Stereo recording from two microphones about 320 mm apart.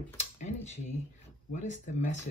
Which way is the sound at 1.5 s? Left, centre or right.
Left.